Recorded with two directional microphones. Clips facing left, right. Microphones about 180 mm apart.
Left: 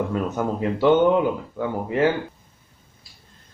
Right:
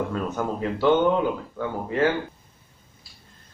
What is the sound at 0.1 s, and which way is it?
Speech, 20° left (ahead or behind).